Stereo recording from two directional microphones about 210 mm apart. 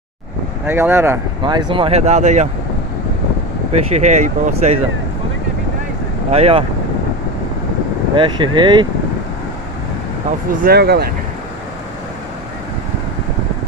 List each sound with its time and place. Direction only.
0.7 s speech: 10° right (ahead or behind)
1.7 s speech: 25° right (ahead or behind)
3.9 s speech: 35° right (ahead or behind)
6.3 s speech: 30° right (ahead or behind)
8.2 s speech: 20° right (ahead or behind)
10.6 s speech: 50° right (ahead or behind)